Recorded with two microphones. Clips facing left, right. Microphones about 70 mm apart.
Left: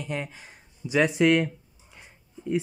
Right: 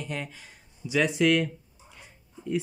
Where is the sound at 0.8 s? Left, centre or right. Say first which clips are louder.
Left 2 dB; left.